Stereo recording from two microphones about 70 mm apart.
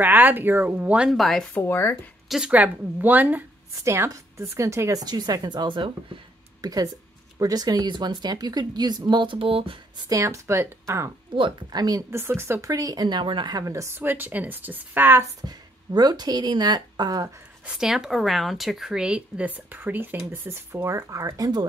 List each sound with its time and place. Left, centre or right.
0.0 s speech: right
1.1 s speech: centre
1.6 s speech: left
2.5 s speech: right
3.8 s a woman's voice: right
4.9 s a woman's voice: right
10.0 s a woman's voice: right
11.7 s speech: right
12.1 s speech: right
12.6 s speech: right
13.7 s a woman's voice: right
13.9 s speech: right
15.4 s speech: right
17.6 s speech: centre; by 21.6 s right